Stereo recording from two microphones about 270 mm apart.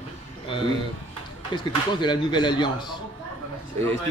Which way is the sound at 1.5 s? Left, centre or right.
Centre.